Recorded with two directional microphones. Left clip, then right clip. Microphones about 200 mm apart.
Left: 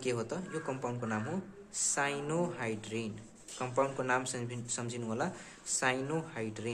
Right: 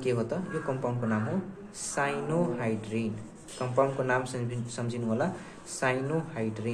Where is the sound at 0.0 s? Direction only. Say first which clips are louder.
Right 6 dB; 35° left (ahead or behind).